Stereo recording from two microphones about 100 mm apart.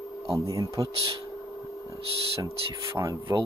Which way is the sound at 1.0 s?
65° right (ahead or behind).